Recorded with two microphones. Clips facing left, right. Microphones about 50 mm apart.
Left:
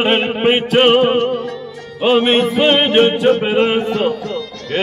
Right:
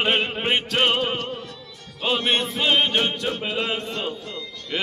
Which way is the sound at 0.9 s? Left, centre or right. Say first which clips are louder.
Left 11 dB; left.